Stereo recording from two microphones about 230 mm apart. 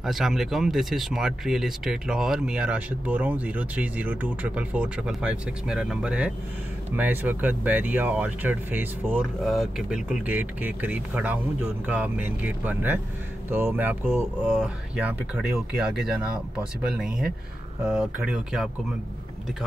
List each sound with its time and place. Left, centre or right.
0.0 s speech: centre